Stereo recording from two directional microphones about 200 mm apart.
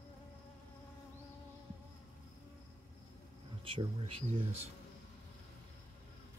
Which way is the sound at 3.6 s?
25° right (ahead or behind).